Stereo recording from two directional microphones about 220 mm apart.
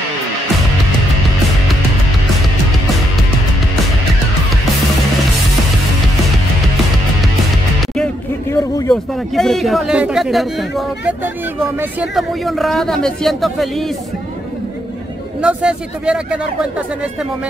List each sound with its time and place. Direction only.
7.9 s music: 5° left (ahead or behind)
8.5 s a sound: 15° left (ahead or behind)
8.9 s speech: centre (ahead or behind)
15.4 s speech: 5° right (ahead or behind)